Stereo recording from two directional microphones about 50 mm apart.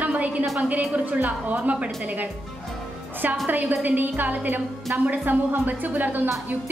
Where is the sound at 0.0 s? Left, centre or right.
Right.